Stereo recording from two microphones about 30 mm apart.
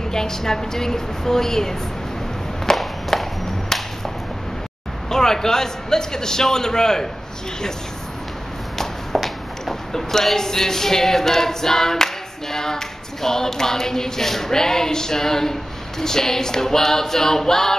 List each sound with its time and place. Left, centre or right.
0.1 s a capella: centre
2.8 s a sound: centre
5.1 s a man's voice: centre
8.7 s speech: centre
16.0 s a capella: centre